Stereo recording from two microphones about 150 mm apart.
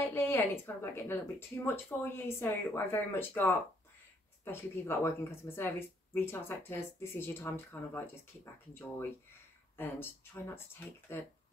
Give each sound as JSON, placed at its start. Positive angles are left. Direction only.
{"t": 0.1, "sound": "speech", "side_deg": 15}
{"t": 9.8, "sound": "speech", "side_deg": 15}